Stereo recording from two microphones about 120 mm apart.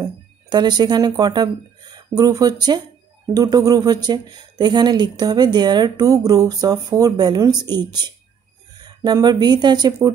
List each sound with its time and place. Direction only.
0.0 s speech: 35° right (ahead or behind)